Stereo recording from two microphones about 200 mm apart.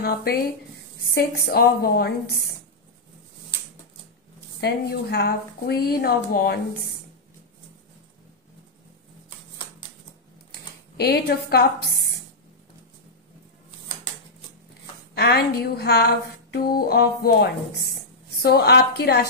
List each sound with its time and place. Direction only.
0.0 s a woman's voice: 50° left (ahead or behind)
4.6 s a woman's voice: 55° left (ahead or behind)
11.0 s a woman's voice: 55° left (ahead or behind)
15.1 s a woman's voice: 55° left (ahead or behind)